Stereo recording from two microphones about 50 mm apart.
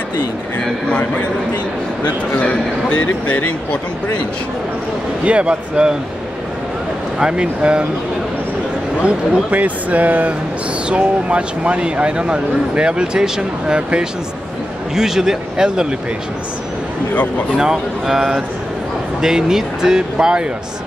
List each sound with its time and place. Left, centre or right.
0.8 s a man's voice: left
2.4 s a man's voice: left
5.2 s speech: right
7.2 s speech: centre
9.0 s speech: right; by 15.9 s centre
17.1 s a man's voice: left
17.6 s speech: centre